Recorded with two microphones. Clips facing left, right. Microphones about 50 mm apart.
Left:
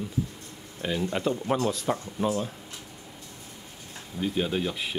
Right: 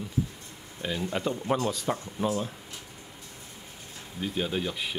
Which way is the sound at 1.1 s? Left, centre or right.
Centre.